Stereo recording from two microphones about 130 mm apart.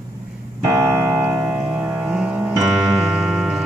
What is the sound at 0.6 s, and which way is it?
Keyboard, 15° right (ahead or behind).